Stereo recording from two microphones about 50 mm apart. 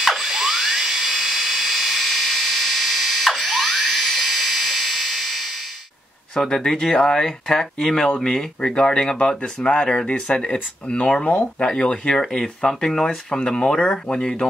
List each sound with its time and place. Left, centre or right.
0.0 s dental drill: centre
6.3 s speech: centre
12.2 s speech: centre